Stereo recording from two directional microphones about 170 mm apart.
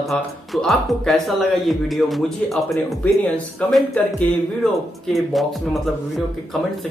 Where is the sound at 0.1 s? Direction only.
Centre (ahead or behind).